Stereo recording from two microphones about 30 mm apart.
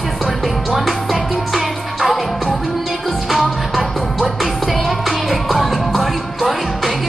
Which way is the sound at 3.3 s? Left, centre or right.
Centre.